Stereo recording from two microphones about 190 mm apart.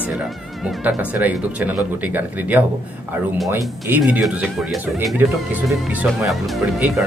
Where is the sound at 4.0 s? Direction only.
5° right (ahead or behind).